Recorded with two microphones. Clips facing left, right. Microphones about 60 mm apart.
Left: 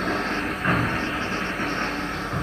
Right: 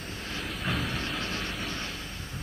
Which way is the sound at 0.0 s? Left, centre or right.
Left.